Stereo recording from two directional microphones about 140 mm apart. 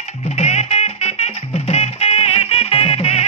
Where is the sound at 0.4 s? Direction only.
50° left (ahead or behind).